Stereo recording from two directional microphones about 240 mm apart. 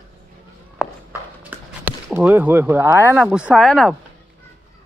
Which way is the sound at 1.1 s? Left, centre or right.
Centre.